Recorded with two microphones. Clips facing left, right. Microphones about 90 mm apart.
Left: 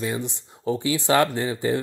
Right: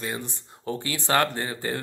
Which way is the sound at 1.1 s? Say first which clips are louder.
Left 3 dB; 45° right (ahead or behind).